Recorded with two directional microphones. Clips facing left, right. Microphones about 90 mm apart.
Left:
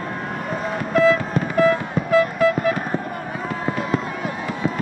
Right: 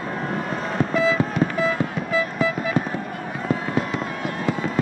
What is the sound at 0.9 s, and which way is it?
Music, 55° left (ahead or behind).